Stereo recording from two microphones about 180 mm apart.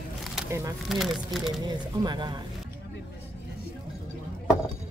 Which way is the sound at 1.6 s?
25° right (ahead or behind).